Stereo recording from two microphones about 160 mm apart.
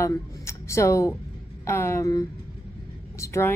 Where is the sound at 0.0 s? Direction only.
15° left (ahead or behind).